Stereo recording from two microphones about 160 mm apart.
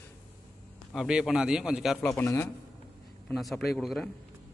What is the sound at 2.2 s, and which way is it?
Speech, 20° left (ahead or behind).